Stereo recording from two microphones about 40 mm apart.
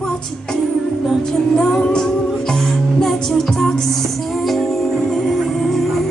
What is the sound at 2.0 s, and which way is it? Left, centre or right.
Music, centre.